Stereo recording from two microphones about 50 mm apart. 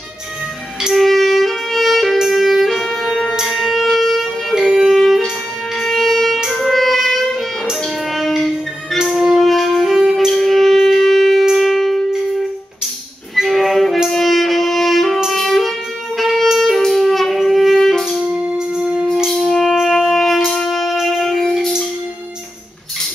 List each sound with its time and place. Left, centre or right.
0.8 s music: centre
3.9 s wind instrument: centre
4.8 s music: centre
13.4 s music: centre
14.0 s wind instrument: centre
15.3 s music: centre
16.2 s saxophone: centre
16.5 s music: centre
18.8 s music: centre
19.3 s wind instrument: centre